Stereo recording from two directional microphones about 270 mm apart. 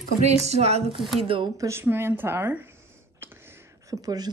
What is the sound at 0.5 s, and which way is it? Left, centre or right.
Speech, right.